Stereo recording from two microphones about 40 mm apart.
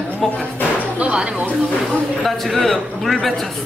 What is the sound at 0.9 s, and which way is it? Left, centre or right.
Speech, right.